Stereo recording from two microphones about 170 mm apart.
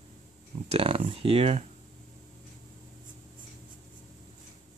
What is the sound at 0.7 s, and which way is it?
Speech, 30° right (ahead or behind).